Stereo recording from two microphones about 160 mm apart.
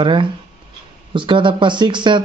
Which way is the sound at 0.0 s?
30° right (ahead or behind).